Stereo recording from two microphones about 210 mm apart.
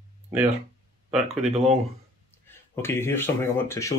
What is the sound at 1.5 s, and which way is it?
Speech, 30° right (ahead or behind).